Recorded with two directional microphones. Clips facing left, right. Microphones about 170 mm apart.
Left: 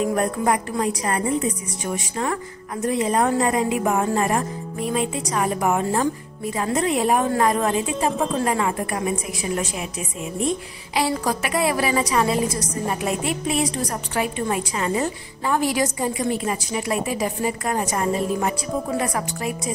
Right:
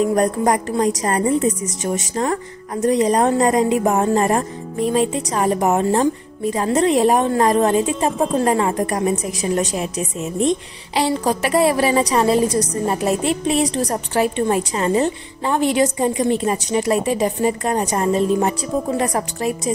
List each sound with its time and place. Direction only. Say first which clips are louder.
0.1 s speech: right 4 dB; 40° right (ahead or behind)
11.0 s a woman's voice: right 4 dB; 30° right (ahead or behind)